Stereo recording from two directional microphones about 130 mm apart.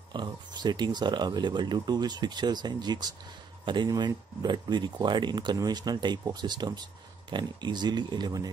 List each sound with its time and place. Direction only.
0.1 s speech: 35° right (ahead or behind)